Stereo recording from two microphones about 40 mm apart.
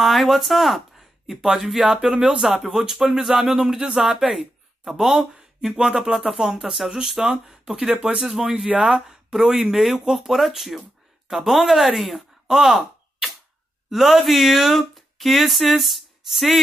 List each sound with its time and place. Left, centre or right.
0.0 s speech: centre
5.3 s speech: centre